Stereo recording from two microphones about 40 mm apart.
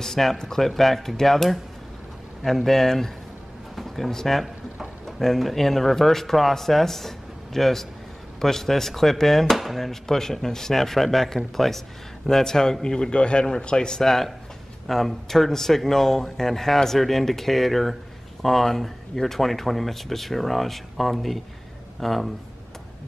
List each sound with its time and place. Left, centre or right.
0.0 s speech: centre
14.0 s speech: centre